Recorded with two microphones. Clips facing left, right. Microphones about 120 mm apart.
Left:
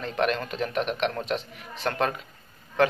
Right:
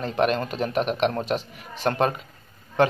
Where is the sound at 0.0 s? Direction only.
35° right (ahead or behind).